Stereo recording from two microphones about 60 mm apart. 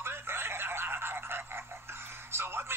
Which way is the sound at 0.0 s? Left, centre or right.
Right.